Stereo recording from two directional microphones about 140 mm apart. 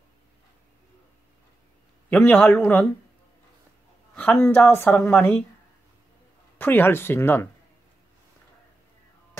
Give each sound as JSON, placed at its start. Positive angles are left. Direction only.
{"t": 2.0, "sound": "a woman's voice", "side_deg": 10}
{"t": 4.1, "sound": "a sound", "side_deg": 10}
{"t": 4.6, "sound": "a woman's voice", "side_deg": 10}
{"t": 6.6, "sound": "a woman's voice", "side_deg": 15}